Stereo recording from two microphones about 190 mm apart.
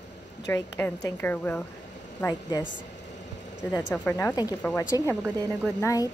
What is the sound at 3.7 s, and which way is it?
Speech, 10° left (ahead or behind).